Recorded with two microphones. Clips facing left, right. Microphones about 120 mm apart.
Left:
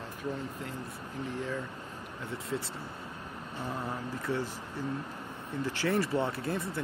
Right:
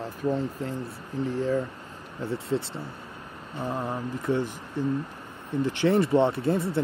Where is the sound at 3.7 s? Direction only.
25° right (ahead or behind).